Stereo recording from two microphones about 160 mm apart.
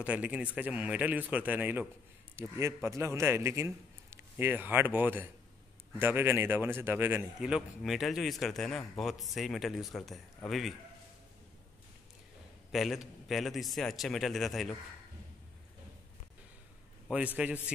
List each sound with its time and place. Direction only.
0.0 s a man's voice: 10° right (ahead or behind)
12.7 s speech: centre (ahead or behind)
17.1 s a man's voice: 5° right (ahead or behind)